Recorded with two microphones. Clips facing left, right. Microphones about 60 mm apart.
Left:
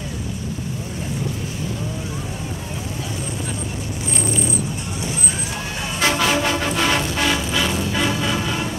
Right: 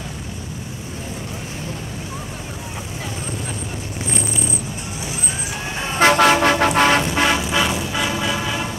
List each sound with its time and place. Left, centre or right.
5.9 s vehicle: right
7.0 s vehicle: right